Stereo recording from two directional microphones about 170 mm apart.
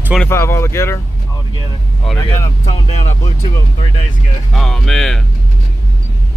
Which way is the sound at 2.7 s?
40° left (ahead or behind).